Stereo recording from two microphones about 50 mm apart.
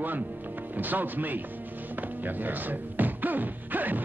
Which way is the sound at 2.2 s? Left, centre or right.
Right.